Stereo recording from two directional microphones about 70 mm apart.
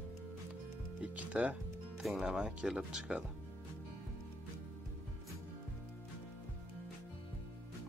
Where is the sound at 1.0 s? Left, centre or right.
Right.